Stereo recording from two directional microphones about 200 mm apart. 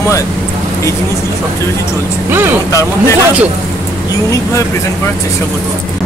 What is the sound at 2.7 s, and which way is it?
Speech, 15° left (ahead or behind).